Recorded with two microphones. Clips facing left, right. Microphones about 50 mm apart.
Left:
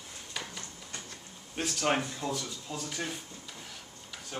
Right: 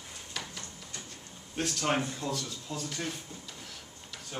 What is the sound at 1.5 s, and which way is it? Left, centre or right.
Speech, centre.